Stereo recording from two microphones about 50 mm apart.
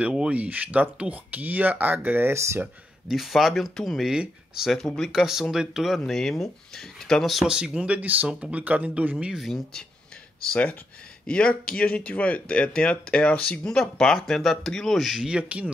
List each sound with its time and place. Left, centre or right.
0.0 s speech: right
2.3 s speech: right
3.1 s speech: centre
4.7 s speech: centre
5.1 s speech: centre
5.9 s speech: centre
7.4 s speech: centre; by 9.2 s right
10.5 s speech: left; by 15.0 s centre
15.1 s speech: centre